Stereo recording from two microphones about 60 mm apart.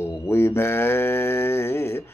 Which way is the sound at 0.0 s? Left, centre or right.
Left.